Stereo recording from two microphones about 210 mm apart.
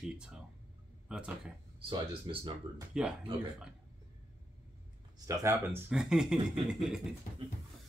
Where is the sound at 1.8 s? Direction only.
25° right (ahead or behind).